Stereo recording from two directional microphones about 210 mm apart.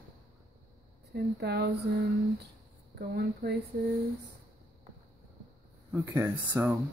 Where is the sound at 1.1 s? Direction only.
50° right (ahead or behind).